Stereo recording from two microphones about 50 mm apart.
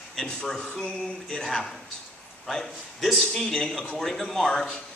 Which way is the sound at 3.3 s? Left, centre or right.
Centre.